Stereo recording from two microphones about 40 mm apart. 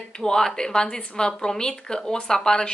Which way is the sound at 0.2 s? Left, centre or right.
Centre.